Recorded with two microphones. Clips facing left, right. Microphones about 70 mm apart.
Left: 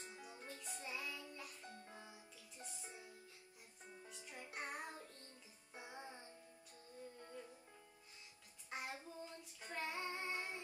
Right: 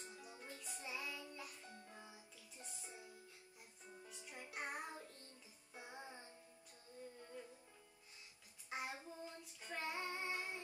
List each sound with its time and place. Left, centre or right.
0.0 s music: left
0.5 s music: centre
4.1 s music: centre
8.6 s child singing: centre